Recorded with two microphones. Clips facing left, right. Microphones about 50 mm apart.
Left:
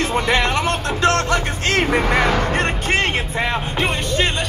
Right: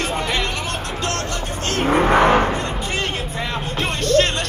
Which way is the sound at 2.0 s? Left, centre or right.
Right.